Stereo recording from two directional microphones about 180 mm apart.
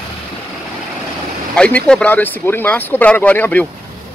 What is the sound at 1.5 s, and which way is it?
A man's voice, 5° left (ahead or behind).